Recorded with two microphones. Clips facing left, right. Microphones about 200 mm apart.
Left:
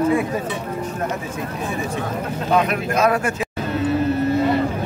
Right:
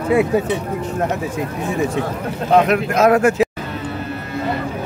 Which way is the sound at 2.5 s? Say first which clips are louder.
Right 5 dB; 75° right (ahead or behind).